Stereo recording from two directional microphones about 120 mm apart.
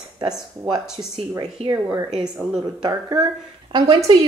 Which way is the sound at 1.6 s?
60° right (ahead or behind).